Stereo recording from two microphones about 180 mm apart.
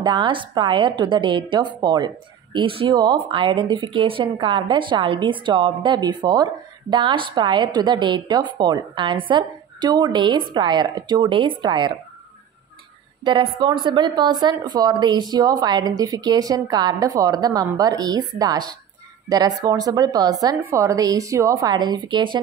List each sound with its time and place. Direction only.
0.0 s a woman's voice: 25° right (ahead or behind)
13.2 s a woman's voice: 25° right (ahead or behind)